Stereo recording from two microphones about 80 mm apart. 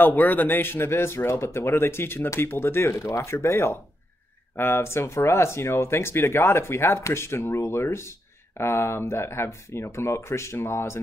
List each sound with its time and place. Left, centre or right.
0.0 s speech: left